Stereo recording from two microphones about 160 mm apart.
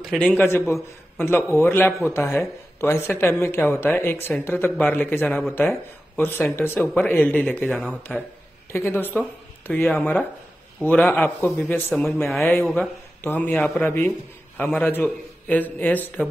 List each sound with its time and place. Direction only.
0.0 s a man's voice: 5° left (ahead or behind)
8.7 s a man's voice: 15° left (ahead or behind)
13.2 s speech: 15° left (ahead or behind)